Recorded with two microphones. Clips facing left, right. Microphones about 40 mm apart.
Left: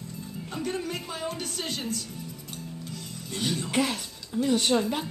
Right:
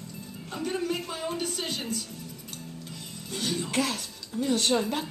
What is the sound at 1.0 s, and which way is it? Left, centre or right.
Music, centre.